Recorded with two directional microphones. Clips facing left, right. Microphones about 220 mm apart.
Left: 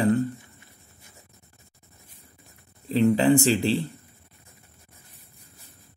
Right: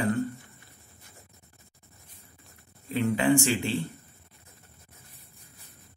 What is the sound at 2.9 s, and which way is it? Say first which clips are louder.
A man's voice: left 5 dB; 35° left (ahead or behind).